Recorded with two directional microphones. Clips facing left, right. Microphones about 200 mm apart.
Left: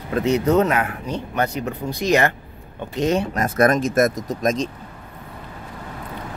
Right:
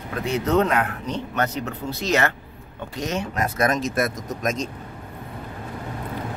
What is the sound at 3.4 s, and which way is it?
Speech, 55° left (ahead or behind).